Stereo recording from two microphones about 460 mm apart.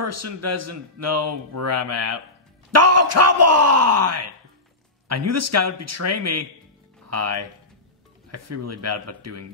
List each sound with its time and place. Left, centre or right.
0.0 s speech: right